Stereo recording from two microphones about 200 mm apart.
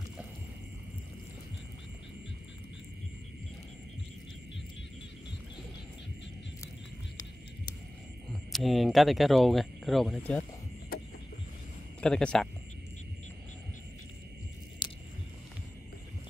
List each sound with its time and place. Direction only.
8.3 s speech: centre (ahead or behind)
12.0 s speech: 5° left (ahead or behind)
14.8 s a sound: 25° left (ahead or behind)